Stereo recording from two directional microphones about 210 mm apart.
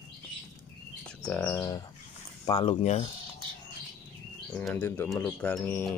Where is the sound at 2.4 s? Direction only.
20° left (ahead or behind).